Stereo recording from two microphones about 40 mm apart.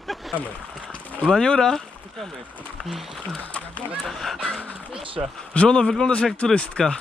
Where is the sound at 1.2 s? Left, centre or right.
Centre.